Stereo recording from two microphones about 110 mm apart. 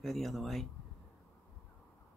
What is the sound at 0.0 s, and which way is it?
Speech, centre (ahead or behind).